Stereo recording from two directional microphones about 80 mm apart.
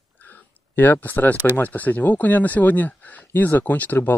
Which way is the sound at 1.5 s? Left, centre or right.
Centre.